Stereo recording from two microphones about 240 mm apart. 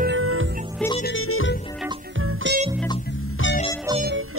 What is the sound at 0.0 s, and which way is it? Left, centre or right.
Music, right.